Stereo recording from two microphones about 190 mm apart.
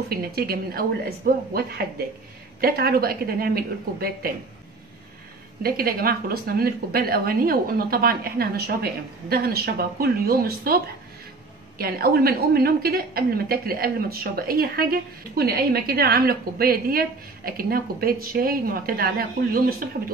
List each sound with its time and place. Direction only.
0.1 s a woman's voice: 50° right (ahead or behind)
5.6 s a woman's voice: 50° right (ahead or behind)
11.8 s a woman's voice: 50° right (ahead or behind)